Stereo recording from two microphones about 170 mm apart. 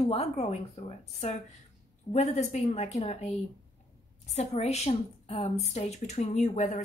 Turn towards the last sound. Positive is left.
turn(degrees=45)  # may be behind; listen again after turning